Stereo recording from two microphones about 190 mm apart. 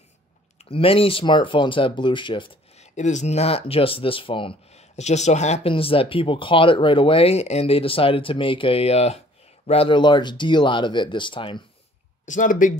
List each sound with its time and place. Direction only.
0.6 s speech: 30° left (ahead or behind)
12.3 s speech: 45° left (ahead or behind)